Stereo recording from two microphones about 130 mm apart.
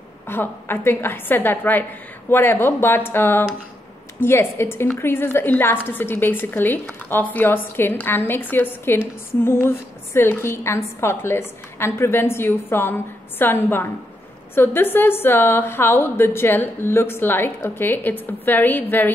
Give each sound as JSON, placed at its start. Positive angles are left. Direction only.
{"t": 0.3, "sound": "a woman's voice", "side_deg": 15}